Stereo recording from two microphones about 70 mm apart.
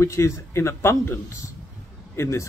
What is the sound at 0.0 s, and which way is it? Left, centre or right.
Speech, left.